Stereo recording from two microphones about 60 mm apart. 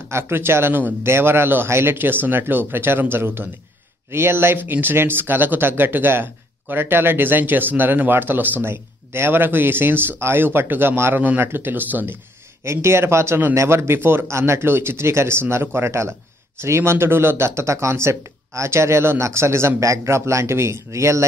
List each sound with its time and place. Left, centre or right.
0.1 s speech: right
12.6 s speech: right
19.8 s a man's voice: right